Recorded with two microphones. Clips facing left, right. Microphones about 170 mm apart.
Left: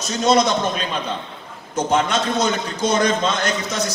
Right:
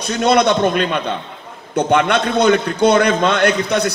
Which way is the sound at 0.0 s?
60° right (ahead or behind).